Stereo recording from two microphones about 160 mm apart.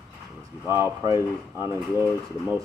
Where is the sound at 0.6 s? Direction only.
15° right (ahead or behind).